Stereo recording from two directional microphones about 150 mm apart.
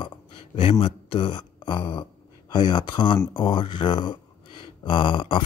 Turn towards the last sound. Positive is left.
turn(degrees=35)  # may be behind; listen again after turning